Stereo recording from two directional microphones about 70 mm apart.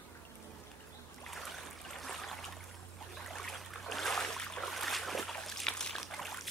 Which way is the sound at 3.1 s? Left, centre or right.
Centre.